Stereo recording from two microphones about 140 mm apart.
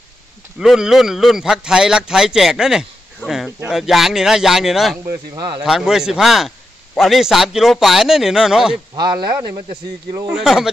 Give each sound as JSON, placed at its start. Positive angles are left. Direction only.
{"t": 0.6, "sound": "speech", "side_deg": -5}
{"t": 5.3, "sound": "speech", "side_deg": -30}
{"t": 5.6, "sound": "speech", "side_deg": -5}
{"t": 8.9, "sound": "speech", "side_deg": -30}
{"t": 10.3, "sound": "speech", "side_deg": -5}